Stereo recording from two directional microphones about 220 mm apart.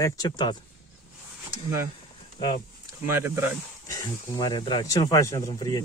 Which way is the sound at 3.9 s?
20° left (ahead or behind).